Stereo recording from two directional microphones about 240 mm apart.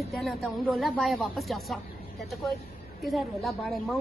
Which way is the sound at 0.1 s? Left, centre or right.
Centre.